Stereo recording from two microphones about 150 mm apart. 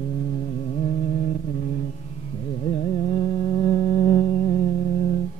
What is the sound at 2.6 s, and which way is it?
Music, 45° left (ahead or behind).